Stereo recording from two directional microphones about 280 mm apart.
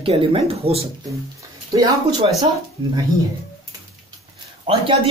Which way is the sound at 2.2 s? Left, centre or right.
Centre.